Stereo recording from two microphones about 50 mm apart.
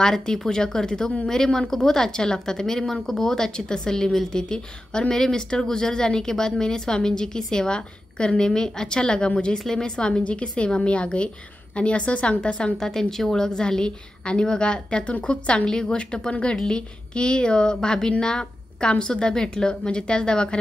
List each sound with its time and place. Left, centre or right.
0.0 s a woman's voice: centre
12.7 s a woman's voice: centre